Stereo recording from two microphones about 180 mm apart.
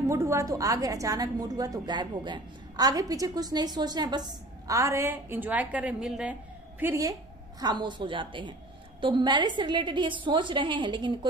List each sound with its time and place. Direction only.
0.0 s a woman's voice: 15° right (ahead or behind)
6.8 s a woman's voice: 15° right (ahead or behind)